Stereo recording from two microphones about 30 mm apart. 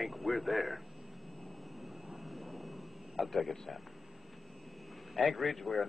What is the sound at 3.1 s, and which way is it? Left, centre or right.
Speech, centre.